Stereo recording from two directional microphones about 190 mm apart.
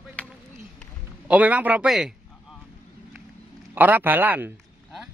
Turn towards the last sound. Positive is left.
turn(degrees=-10)  # may be behind; listen again after turning